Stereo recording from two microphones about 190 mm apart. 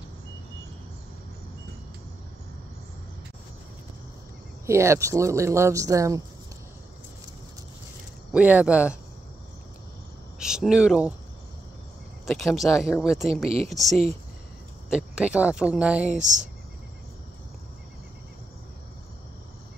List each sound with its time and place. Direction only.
4.6 s speech: 15° right (ahead or behind)
8.3 s speech: 5° right (ahead or behind)
10.4 s speech: 5° right (ahead or behind)
12.3 s speech: centre (ahead or behind)
13.3 s speech: 30° right (ahead or behind)
13.7 s speech: centre (ahead or behind)